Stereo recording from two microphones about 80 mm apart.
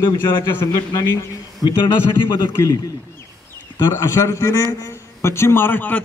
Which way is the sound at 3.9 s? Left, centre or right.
Left.